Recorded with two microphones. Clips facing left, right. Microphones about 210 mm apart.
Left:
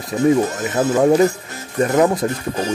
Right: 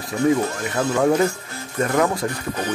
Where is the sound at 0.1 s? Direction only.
25° left (ahead or behind).